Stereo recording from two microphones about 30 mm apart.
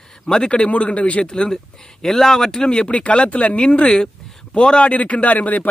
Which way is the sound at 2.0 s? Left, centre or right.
Centre.